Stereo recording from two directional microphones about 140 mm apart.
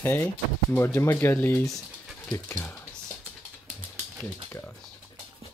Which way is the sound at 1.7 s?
Centre (ahead or behind).